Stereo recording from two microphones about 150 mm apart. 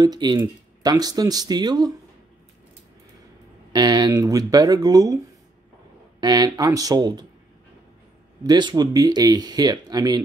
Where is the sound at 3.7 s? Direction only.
25° right (ahead or behind).